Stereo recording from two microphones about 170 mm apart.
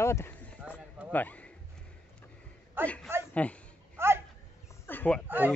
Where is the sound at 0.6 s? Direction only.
10° right (ahead or behind).